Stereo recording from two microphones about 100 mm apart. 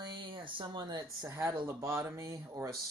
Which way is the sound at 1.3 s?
30° right (ahead or behind).